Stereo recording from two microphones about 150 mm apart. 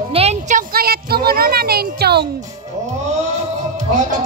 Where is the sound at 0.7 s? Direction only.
90° right.